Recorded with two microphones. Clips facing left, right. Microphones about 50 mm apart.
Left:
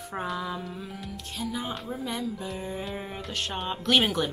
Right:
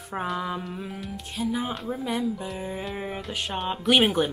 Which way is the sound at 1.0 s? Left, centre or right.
Centre.